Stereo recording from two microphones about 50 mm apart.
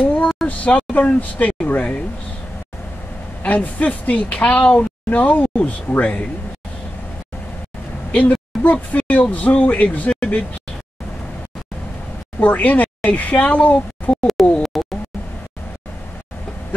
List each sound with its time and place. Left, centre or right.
0.0 s a sound: left
0.5 s speech: left
3.4 s speech: left
8.1 s speech: left
12.4 s speech: left
14.7 s a sound: centre